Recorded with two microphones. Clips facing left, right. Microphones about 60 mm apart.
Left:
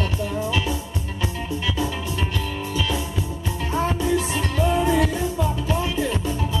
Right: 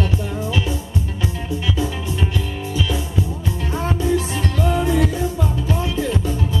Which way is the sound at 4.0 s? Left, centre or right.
Left.